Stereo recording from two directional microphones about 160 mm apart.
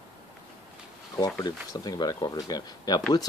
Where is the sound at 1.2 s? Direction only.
25° left (ahead or behind).